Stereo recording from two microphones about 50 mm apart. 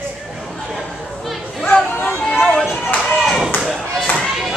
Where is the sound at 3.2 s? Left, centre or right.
Centre.